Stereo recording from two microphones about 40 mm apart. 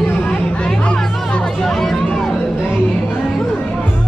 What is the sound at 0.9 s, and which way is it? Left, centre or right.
Music, centre.